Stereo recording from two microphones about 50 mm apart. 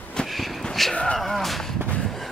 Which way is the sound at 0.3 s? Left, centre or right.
Centre.